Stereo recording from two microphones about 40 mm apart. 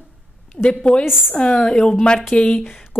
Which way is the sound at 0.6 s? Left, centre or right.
Left.